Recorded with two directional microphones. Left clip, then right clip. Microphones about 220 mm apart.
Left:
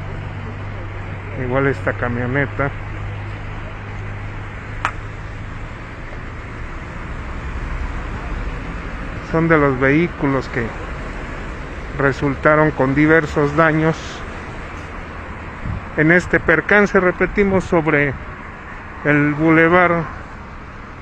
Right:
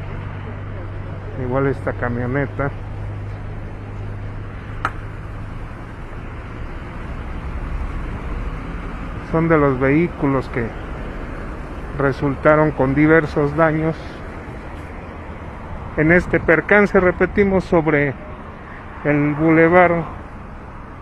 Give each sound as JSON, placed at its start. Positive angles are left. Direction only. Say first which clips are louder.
{"t": 1.5, "sound": "speech", "louder": "left 2 dB", "side_deg": 0}
{"t": 9.3, "sound": "speech", "louder": "left 1 dB", "side_deg": 0}
{"t": 12.0, "sound": "speech", "louder": "left 1 dB", "side_deg": -5}
{"t": 16.0, "sound": "speech", "louder": "left 1 dB", "side_deg": -5}